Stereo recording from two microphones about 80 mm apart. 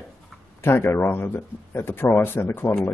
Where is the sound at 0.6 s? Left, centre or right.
Left.